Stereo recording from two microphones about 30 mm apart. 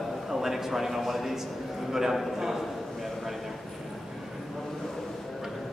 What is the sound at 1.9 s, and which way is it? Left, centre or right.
Speech, centre.